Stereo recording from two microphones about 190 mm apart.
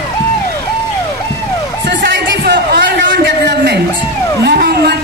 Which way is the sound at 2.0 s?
65° right (ahead or behind).